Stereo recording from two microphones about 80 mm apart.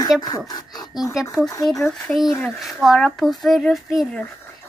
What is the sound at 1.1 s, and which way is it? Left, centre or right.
Speech, centre.